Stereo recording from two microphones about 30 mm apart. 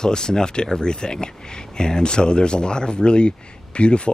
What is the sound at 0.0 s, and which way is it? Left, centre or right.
Speech, left.